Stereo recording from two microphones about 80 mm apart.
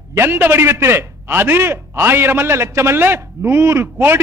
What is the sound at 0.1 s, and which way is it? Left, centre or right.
A man's voice, right.